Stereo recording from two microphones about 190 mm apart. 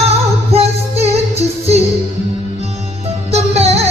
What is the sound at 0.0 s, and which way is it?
Music, 35° right (ahead or behind).